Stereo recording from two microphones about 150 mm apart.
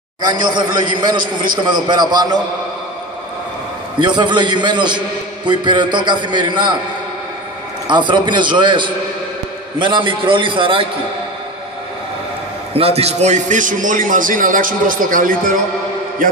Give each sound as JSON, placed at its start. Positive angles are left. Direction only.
{"t": 0.2, "sound": "a man's voice", "side_deg": -30}
{"t": 1.2, "sound": "a man's voice", "side_deg": -70}
{"t": 1.7, "sound": "a man's voice", "side_deg": -30}
{"t": 4.0, "sound": "a man's voice", "side_deg": -30}
{"t": 7.9, "sound": "a man's voice", "side_deg": -30}
{"t": 12.7, "sound": "a man's voice", "side_deg": -40}